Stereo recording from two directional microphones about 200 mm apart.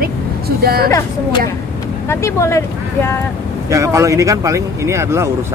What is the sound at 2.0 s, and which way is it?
Speech, 15° left (ahead or behind).